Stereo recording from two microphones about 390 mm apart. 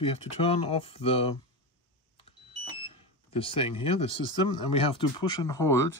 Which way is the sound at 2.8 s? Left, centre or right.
Centre.